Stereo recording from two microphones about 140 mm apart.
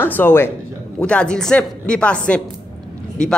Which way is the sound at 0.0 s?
15° left (ahead or behind).